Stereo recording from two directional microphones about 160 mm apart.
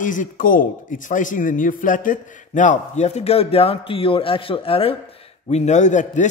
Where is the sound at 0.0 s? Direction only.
55° left (ahead or behind).